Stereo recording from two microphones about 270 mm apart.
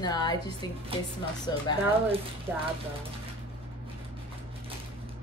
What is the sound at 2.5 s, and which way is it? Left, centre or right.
Speech, centre.